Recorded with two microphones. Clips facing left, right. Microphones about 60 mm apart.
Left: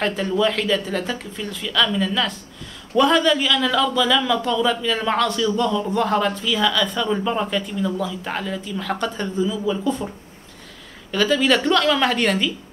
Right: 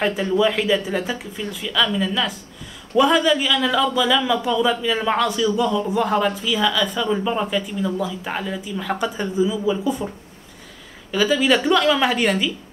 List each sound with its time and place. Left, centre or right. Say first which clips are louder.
0.0 s speech: right 1 dB; centre